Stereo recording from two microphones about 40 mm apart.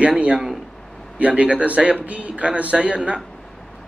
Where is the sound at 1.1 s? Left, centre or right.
Right.